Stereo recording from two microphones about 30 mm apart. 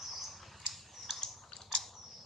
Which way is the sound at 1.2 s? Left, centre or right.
Left.